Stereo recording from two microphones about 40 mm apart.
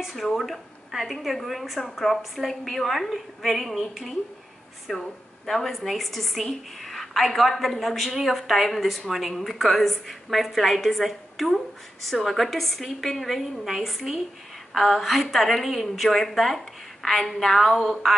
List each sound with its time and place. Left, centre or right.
0.1 s a woman's voice: centre